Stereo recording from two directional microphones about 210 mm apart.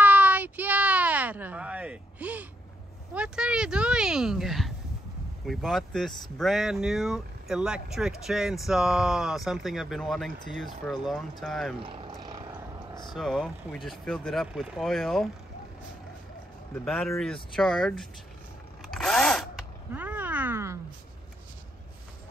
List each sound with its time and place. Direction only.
0.0 s a sound: 5° right (ahead or behind)
3.2 s speech: 5° right (ahead or behind)
11.8 s wild animals: 25° right (ahead or behind)
13.0 s speech: centre (ahead or behind)
16.8 s speech: 5° left (ahead or behind)
18.9 s zipper: centre (ahead or behind)
19.9 s cat: 10° right (ahead or behind)